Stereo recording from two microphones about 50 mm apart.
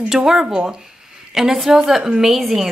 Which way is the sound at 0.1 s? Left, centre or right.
Centre.